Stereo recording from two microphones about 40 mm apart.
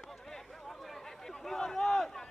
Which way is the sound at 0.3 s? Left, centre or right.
Centre.